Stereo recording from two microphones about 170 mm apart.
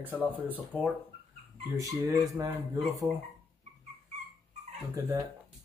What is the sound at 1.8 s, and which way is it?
Speech, 20° right (ahead or behind).